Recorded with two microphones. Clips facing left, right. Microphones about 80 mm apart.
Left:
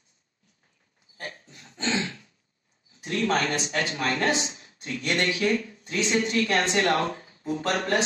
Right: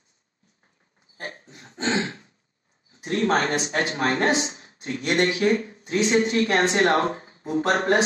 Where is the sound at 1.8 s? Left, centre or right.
Right.